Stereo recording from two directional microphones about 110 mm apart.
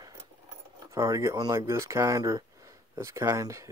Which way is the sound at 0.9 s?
25° right (ahead or behind).